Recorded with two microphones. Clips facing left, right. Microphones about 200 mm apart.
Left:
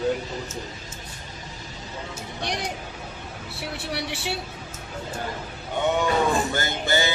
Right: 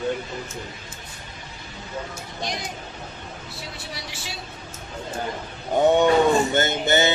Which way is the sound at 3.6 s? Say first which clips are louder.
Left 9 dB; 65° left (ahead or behind).